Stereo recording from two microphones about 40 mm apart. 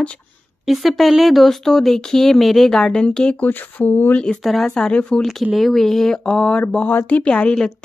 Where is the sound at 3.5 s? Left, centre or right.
Left.